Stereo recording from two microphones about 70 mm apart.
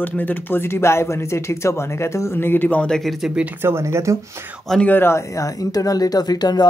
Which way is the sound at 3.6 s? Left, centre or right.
Right.